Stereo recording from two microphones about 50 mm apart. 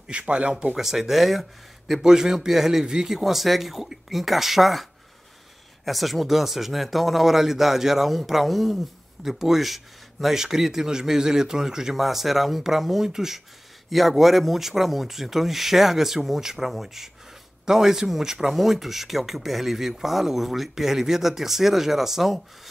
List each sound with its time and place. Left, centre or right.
0.1 s speech: right
0.7 s speech: centre
5.9 s speech: centre